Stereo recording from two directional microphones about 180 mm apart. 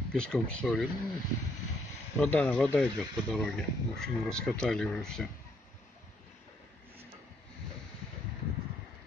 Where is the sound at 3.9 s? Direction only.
5° left (ahead or behind).